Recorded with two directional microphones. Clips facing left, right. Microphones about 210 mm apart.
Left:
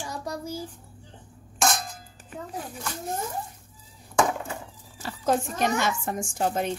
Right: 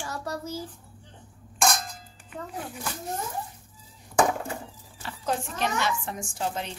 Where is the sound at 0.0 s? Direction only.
15° left (ahead or behind).